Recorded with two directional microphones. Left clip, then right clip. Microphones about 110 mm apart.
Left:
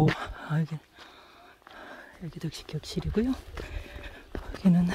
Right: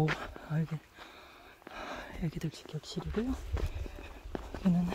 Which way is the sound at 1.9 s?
35° right (ahead or behind).